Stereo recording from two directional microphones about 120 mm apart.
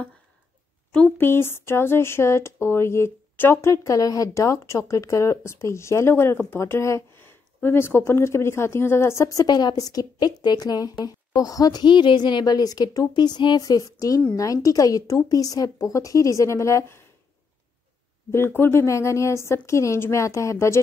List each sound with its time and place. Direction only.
0.9 s speech: 15° left (ahead or behind)
18.3 s speech: 20° left (ahead or behind)